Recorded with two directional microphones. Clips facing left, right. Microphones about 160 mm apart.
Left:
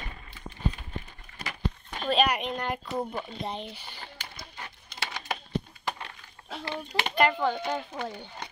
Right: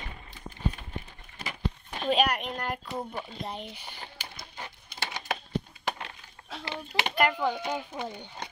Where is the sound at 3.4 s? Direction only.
10° right (ahead or behind).